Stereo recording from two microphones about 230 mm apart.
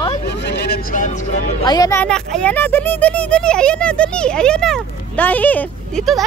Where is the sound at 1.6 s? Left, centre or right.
Centre.